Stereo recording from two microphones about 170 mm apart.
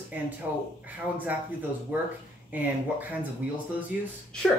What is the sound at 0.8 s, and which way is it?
Speech, 10° right (ahead or behind).